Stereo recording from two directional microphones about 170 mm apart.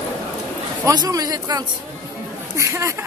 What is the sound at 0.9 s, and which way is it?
A man's voice, 20° right (ahead or behind).